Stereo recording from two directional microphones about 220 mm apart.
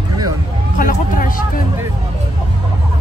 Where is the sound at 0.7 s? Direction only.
40° left (ahead or behind).